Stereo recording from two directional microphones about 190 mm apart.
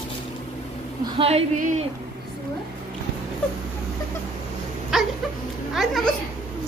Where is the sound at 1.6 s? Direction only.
40° right (ahead or behind).